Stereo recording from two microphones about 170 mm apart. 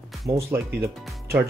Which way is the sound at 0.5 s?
15° right (ahead or behind).